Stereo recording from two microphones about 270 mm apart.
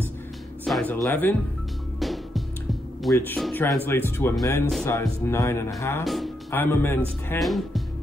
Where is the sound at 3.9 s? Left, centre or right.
Centre.